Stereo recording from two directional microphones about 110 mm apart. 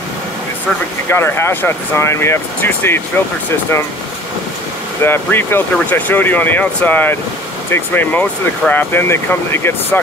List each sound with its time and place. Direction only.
1.0 s speech: 20° left (ahead or behind)
5.0 s speech: 20° left (ahead or behind)